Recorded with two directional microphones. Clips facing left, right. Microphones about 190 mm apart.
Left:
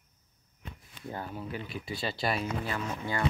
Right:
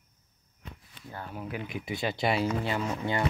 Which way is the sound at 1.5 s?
15° right (ahead or behind).